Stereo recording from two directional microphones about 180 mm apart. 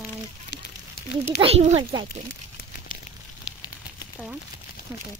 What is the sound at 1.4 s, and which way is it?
Speech, 35° right (ahead or behind).